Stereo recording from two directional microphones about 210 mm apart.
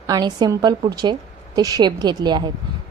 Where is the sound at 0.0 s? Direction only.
20° right (ahead or behind).